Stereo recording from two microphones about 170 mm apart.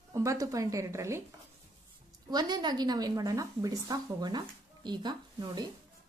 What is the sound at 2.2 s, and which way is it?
A woman's voice, 25° right (ahead or behind).